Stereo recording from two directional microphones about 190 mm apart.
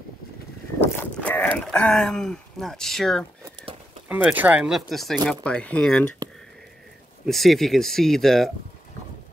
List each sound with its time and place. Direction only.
0.7 s speech: 10° left (ahead or behind)
4.1 s speech: 10° right (ahead or behind)
7.2 s speech: centre (ahead or behind)